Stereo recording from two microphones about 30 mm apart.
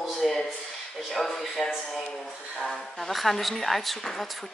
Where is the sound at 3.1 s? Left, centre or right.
Centre.